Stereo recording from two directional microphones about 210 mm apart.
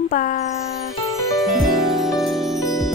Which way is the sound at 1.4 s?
Centre (ahead or behind).